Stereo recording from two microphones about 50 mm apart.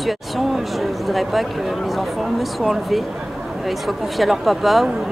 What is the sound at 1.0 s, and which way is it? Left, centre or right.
A woman's voice, centre.